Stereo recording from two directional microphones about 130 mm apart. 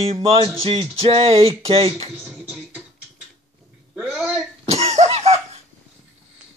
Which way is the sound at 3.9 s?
10° right (ahead or behind).